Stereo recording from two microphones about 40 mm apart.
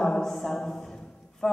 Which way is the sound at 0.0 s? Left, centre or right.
Centre.